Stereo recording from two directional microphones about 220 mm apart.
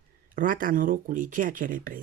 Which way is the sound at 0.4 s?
40° right (ahead or behind).